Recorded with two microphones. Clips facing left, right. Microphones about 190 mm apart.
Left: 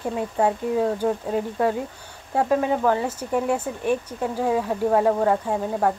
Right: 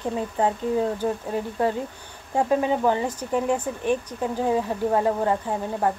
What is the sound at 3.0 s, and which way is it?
Speech, 10° left (ahead or behind).